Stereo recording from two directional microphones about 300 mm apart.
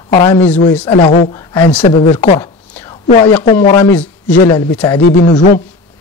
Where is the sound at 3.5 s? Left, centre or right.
Left.